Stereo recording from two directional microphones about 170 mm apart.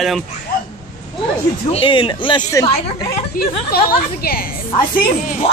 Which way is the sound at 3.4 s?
60° left (ahead or behind).